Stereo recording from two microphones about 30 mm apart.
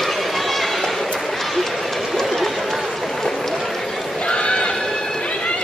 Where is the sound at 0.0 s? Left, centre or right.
Centre.